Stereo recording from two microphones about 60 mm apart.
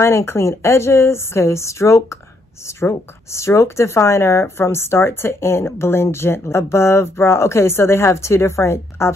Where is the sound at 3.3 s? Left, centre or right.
Left.